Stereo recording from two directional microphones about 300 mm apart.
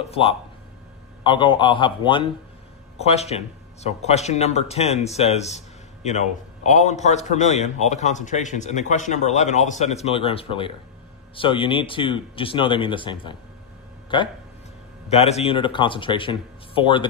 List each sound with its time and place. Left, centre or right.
0.0 s a man's voice: centre
6.7 s a man's voice: left